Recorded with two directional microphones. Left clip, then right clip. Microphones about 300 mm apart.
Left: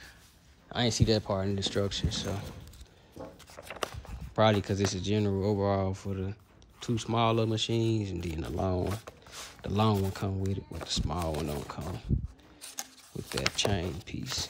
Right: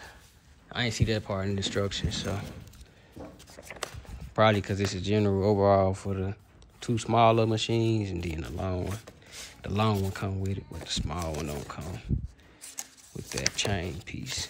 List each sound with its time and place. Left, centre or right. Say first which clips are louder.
0.7 s speech: left 2 dB; centre
3.6 s a sound: left 2 dB; left
4.4 s speech: right 2 dB; centre